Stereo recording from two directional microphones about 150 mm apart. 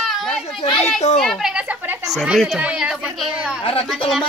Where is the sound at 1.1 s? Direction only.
Centre (ahead or behind).